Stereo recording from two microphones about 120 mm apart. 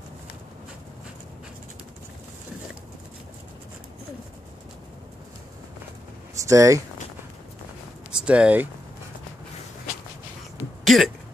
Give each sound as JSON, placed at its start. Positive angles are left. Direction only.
{"t": 6.4, "sound": "speech", "side_deg": -25}
{"t": 8.1, "sound": "speech", "side_deg": -10}
{"t": 10.8, "sound": "throat clearing", "side_deg": 0}